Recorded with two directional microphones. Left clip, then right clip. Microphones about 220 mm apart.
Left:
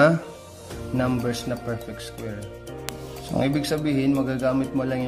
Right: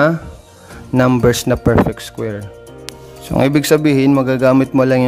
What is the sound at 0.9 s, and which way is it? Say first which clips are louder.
Speech: right 13 dB; 35° right (ahead or behind).